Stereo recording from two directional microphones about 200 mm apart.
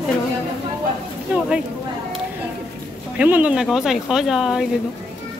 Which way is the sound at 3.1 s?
5° right (ahead or behind).